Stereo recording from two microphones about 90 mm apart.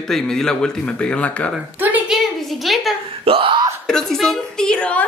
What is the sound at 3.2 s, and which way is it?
Hiccup, 85° right.